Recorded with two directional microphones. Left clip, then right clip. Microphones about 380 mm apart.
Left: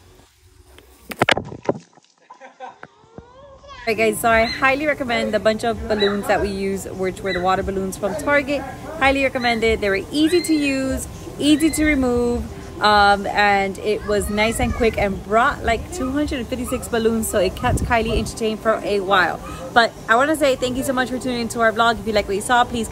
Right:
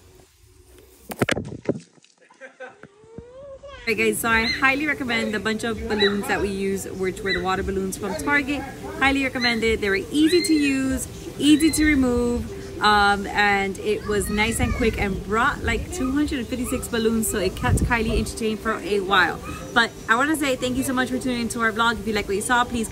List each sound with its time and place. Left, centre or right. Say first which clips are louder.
1.0 s a sound: left 6 dB; centre
3.8 s speech: left 4 dB; centre
10.9 s cat: left 2 dB; left
11.4 s speech: left 1 dB; centre